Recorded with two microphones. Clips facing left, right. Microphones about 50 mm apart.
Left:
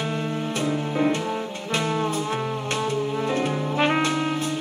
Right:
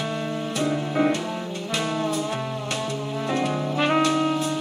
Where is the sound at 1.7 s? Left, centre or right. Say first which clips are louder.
Left 1 dB; left.